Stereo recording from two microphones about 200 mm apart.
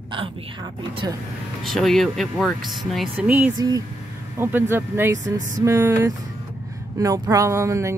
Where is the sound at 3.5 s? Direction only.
20° right (ahead or behind).